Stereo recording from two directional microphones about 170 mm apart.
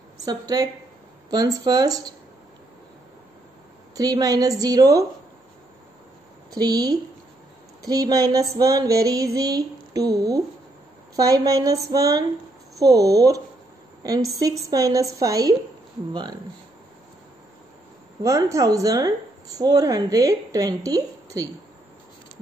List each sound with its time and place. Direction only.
0.2 s a woman's voice: 20° right (ahead or behind)
3.9 s a woman's voice: 20° right (ahead or behind)
6.5 s a woman's voice: 20° right (ahead or behind)
18.2 s a woman's voice: 20° right (ahead or behind)